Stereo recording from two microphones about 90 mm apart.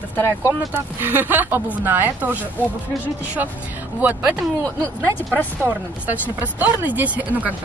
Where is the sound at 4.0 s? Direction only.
20° right (ahead or behind).